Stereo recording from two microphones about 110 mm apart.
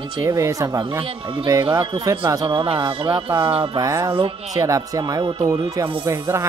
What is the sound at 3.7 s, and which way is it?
Speech, 30° right (ahead or behind).